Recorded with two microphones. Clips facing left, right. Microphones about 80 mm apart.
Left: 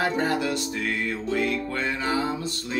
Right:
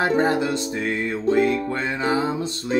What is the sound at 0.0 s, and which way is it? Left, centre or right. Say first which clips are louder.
Music: right 5 dB; right.